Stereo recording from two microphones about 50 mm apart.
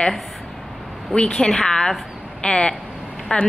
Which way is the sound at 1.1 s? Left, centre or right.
Centre.